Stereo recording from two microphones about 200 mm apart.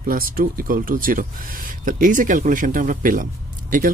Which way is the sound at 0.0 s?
45° right (ahead or behind).